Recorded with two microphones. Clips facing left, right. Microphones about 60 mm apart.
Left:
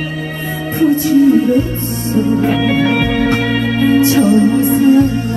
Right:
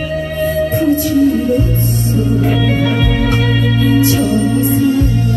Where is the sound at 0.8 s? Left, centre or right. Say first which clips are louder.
Left 4 dB; left.